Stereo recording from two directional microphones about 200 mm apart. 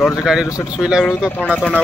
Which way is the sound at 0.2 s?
Centre (ahead or behind).